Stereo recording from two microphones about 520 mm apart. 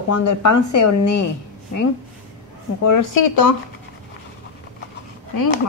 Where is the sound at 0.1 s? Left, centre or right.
Left.